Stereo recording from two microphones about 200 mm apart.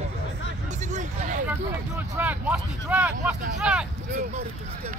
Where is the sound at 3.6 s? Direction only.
5° right (ahead or behind).